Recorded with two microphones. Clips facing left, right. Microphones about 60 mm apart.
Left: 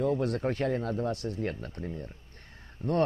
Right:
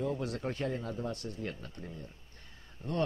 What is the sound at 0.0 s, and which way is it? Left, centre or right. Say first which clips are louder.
A man's voice: left 7 dB; left.